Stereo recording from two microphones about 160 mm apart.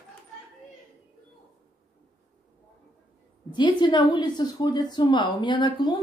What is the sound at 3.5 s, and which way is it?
A woman's voice, 30° left (ahead or behind).